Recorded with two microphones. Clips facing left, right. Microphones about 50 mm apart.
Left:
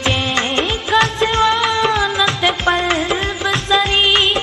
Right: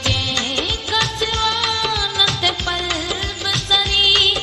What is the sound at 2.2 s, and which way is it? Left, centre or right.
Music, centre.